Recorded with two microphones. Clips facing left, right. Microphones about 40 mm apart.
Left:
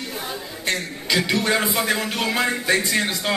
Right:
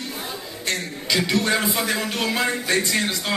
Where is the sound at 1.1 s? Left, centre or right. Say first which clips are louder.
Left 1 dB; centre.